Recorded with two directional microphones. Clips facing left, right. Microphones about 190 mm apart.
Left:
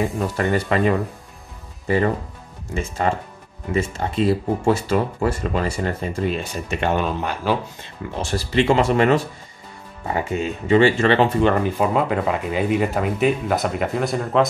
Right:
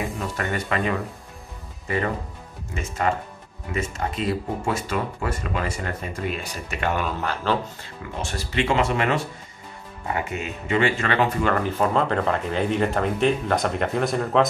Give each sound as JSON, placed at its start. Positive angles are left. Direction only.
{"t": 0.4, "sound": "speech", "side_deg": 35}
{"t": 2.7, "sound": "speech", "side_deg": 30}
{"t": 8.2, "sound": "speech", "side_deg": 35}
{"t": 11.5, "sound": "speech", "side_deg": 15}